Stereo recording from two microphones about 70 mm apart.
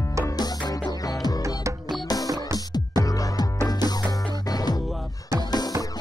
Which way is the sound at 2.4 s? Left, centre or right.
Left.